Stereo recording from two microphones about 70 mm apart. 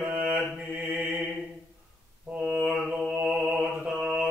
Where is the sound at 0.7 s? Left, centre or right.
Right.